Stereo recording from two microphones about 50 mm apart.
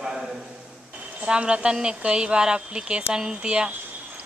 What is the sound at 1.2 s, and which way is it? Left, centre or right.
Speech, centre.